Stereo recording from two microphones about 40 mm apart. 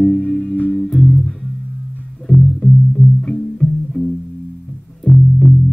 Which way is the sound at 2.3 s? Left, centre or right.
Centre.